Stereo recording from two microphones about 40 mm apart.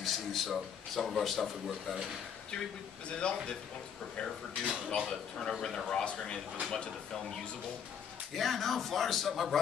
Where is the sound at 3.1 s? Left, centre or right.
Left.